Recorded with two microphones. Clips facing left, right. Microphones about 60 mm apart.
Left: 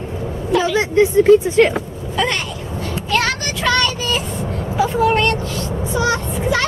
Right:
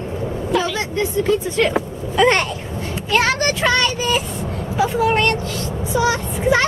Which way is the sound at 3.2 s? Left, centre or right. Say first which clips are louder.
Right 2 dB; right.